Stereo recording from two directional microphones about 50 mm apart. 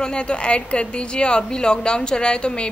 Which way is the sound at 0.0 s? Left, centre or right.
Centre.